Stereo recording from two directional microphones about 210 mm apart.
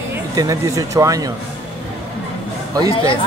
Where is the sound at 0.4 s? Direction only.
15° right (ahead or behind).